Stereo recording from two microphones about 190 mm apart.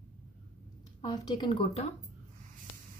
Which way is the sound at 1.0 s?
20° left (ahead or behind).